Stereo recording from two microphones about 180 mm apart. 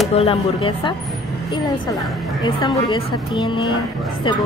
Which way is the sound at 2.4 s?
25° left (ahead or behind).